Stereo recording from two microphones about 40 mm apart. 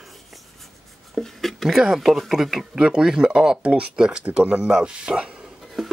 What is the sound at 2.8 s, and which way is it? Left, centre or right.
Speech, right.